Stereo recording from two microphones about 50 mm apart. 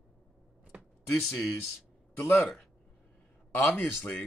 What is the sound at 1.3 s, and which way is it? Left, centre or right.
Speech, centre.